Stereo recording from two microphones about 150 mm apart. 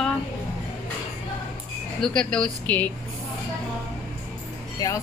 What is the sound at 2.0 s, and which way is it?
Speech, 5° left (ahead or behind).